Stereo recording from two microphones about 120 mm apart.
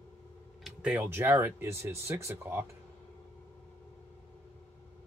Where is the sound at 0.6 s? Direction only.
5° right (ahead or behind).